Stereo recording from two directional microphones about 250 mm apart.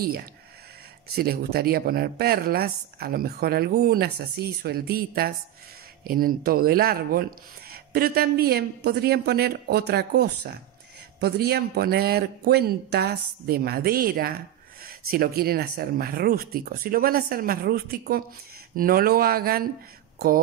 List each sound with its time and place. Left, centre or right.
0.0 s speech: right